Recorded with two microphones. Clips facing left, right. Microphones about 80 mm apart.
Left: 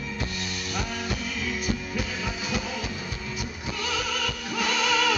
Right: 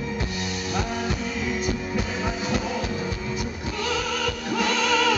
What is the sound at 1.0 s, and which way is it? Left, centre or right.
Music, right.